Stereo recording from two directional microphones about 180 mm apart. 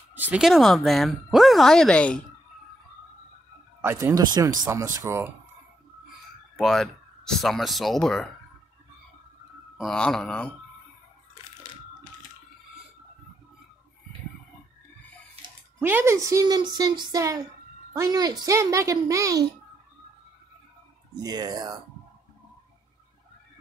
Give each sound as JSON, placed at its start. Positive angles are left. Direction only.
{"t": 0.1, "sound": "speech", "side_deg": -10}
{"t": 3.8, "sound": "a woman's voice", "side_deg": -15}
{"t": 6.5, "sound": "speech", "side_deg": 0}
{"t": 9.8, "sound": "speech", "side_deg": 5}
{"t": 15.4, "sound": "bathtub", "side_deg": -35}
{"t": 15.8, "sound": "a woman's voice", "side_deg": -10}
{"t": 21.2, "sound": "a woman's voice", "side_deg": -20}